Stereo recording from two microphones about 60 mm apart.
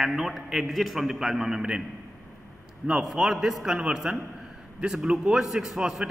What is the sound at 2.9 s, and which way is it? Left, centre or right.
A man's voice, centre.